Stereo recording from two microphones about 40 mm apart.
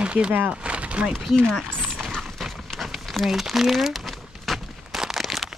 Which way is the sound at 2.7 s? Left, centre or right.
Centre.